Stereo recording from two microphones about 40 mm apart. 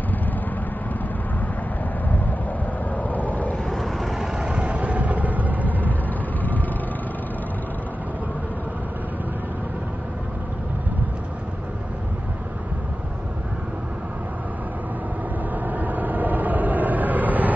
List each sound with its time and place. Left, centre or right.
2.0 s wind: left
3.0 s vehicle: left
3.6 s vehicle: centre
4.2 s vehicle: right
15.5 s vehicle: right